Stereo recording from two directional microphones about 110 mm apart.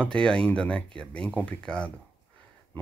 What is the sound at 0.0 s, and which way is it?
Speech, 10° left (ahead or behind).